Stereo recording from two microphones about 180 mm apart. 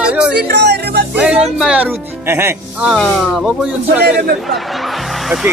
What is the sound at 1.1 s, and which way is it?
Speech, 5° right (ahead or behind).